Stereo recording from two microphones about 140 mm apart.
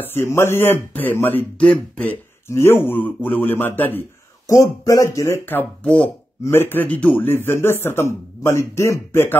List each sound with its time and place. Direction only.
0.0 s speech: 15° left (ahead or behind)